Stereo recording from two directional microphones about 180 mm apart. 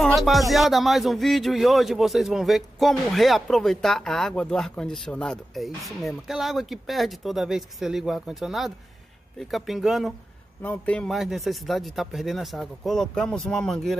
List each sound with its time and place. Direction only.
0.0 s speech: centre (ahead or behind)